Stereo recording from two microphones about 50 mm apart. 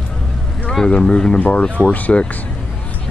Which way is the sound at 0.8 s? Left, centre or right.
Centre.